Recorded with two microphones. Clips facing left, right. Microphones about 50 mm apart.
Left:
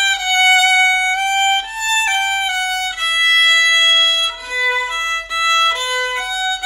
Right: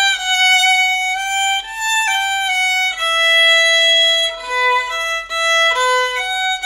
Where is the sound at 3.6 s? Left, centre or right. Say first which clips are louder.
Even; left.